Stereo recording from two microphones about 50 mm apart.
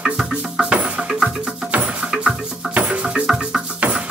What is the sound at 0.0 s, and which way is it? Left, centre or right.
Music, centre.